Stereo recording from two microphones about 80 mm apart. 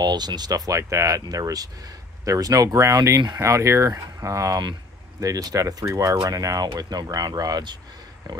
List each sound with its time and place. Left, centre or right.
0.0 s speech: right